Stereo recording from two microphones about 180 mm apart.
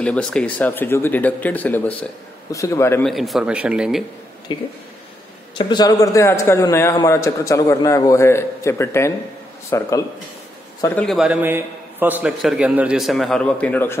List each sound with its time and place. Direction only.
0.0 s a man's voice: 5° left (ahead or behind)
3.1 s a man's voice: centre (ahead or behind)
4.5 s a man's voice: 25° left (ahead or behind)
11.0 s a man's voice: centre (ahead or behind)